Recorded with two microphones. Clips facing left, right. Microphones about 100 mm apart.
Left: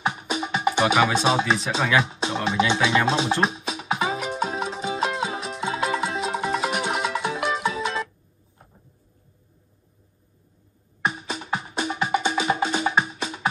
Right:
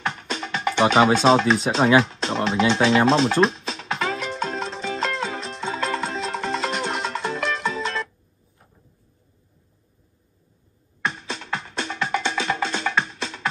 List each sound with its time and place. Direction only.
0.0 s music: 10° left (ahead or behind)
1.1 s speech: 10° left (ahead or behind)
1.8 s speech: 30° right (ahead or behind)
2.0 s speech: 10° left (ahead or behind)
3.1 s music: 10° left (ahead or behind)
11.1 s music: 10° left (ahead or behind)